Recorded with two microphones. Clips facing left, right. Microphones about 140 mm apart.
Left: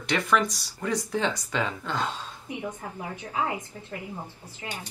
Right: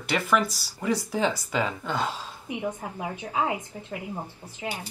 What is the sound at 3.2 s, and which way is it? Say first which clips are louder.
A woman's voice: right 2 dB; 15° right (ahead or behind).